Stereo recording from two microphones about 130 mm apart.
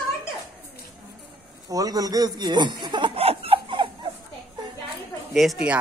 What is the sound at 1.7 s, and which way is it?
Chuckle, 30° right (ahead or behind).